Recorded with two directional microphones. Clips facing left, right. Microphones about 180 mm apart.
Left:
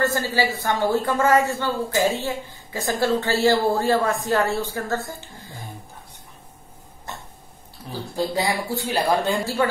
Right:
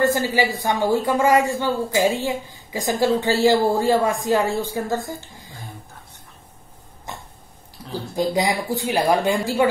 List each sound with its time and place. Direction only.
0.0 s a woman's voice: 15° right (ahead or behind)
8.2 s a woman's voice: 15° right (ahead or behind)